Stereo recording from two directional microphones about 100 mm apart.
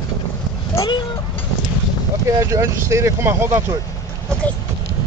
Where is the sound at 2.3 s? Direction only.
30° right (ahead or behind).